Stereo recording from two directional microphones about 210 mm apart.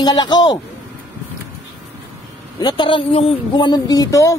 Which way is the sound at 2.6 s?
20° left (ahead or behind).